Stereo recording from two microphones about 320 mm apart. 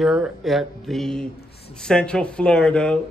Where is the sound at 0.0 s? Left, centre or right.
Centre.